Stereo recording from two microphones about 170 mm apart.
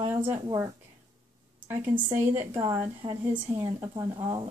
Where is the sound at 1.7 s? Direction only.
15° right (ahead or behind).